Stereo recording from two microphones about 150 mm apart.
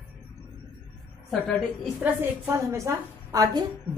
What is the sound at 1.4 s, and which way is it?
A woman's voice, 10° right (ahead or behind).